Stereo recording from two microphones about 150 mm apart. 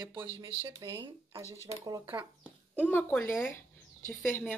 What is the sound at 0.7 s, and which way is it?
Speech, 30° right (ahead or behind).